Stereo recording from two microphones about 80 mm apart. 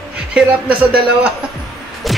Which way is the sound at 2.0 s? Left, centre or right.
Centre.